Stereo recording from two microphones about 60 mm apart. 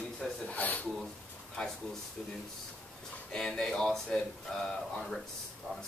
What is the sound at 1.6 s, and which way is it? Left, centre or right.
Speech, centre.